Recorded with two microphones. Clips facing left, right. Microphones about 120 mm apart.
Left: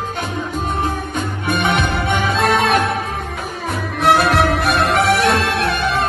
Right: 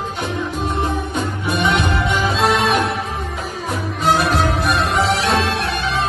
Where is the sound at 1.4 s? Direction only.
55° left (ahead or behind).